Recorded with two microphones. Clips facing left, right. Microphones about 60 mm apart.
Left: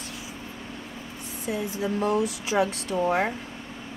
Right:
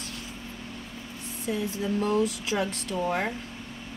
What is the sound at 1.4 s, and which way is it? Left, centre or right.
Speech, centre.